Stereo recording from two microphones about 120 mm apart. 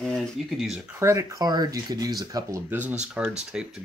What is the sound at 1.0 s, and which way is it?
Speech, 25° right (ahead or behind).